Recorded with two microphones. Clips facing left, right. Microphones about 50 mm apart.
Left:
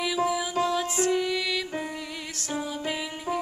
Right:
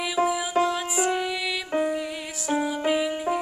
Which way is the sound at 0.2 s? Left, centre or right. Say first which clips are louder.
Right 5 dB; right.